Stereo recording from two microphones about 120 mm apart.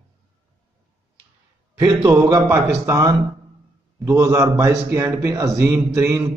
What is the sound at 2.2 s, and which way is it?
A man's voice, 25° right (ahead or behind).